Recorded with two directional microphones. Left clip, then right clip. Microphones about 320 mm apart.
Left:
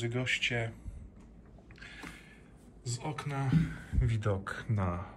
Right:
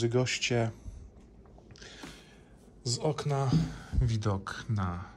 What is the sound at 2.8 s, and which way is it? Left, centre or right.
Speech, centre.